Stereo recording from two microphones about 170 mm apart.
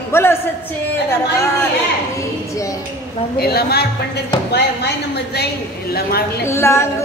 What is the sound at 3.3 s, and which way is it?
A woman's voice, 65° left (ahead or behind).